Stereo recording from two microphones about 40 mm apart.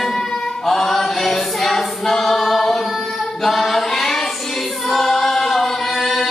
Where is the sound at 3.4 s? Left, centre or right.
Centre.